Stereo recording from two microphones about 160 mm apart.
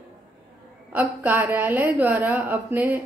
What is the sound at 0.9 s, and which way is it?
Speech, 15° right (ahead or behind).